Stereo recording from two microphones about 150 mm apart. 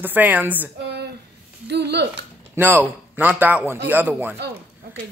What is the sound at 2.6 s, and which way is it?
Speech, 10° right (ahead or behind).